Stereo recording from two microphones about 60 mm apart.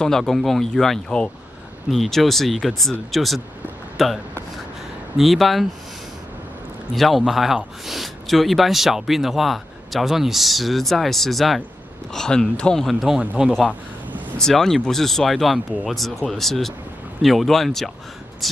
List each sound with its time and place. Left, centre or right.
0.0 s speech: centre
1.9 s speech: centre
6.9 s speech: centre
12.8 s speech: centre
14.4 s speech: centre